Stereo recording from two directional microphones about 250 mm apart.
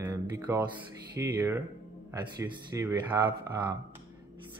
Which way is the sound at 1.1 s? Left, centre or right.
Centre.